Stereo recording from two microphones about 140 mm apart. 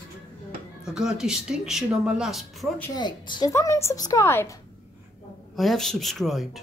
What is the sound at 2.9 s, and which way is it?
Speech, 35° left (ahead or behind).